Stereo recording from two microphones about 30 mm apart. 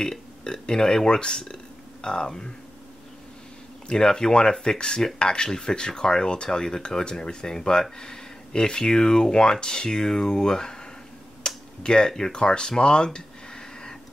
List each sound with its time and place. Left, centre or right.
0.5 s speech: left
3.9 s speech: left
11.4 s tick-tock: left
12.2 s speech: left